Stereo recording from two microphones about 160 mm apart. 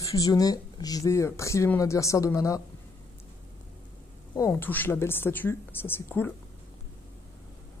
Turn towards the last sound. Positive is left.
turn(degrees=15)  # may be behind; listen again after turning